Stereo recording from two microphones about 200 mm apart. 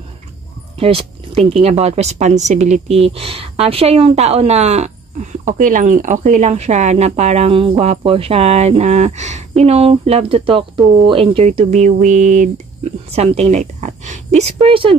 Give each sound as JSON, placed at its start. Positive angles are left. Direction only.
{"t": 0.7, "sound": "a woman's voice", "side_deg": -30}